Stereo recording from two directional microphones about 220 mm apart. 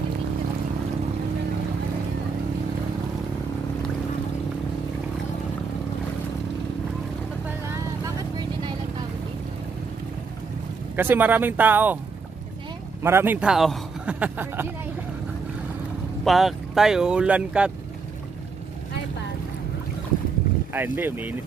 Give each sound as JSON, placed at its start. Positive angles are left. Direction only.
{"t": 8.0, "sound": "vehicle", "side_deg": -20}
{"t": 11.0, "sound": "a man's voice", "side_deg": -10}
{"t": 13.0, "sound": "a man's voice", "side_deg": -10}
{"t": 16.3, "sound": "speech", "side_deg": 0}
{"t": 20.7, "sound": "a man's voice", "side_deg": -10}